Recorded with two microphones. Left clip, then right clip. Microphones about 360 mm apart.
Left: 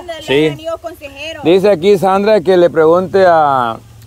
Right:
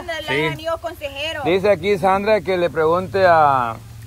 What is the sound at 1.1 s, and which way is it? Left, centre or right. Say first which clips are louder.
Speech: right 2 dB; centre.